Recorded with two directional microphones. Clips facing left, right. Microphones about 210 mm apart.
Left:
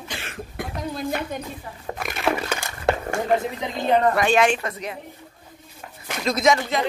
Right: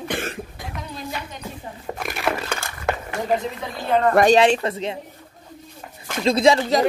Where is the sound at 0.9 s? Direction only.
50° left (ahead or behind).